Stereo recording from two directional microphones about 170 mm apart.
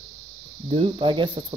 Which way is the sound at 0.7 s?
30° right (ahead or behind).